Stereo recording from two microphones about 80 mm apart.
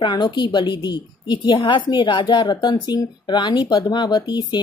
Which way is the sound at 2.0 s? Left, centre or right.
Left.